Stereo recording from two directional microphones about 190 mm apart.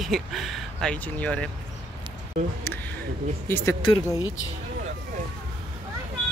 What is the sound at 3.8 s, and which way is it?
Speech, 25° left (ahead or behind).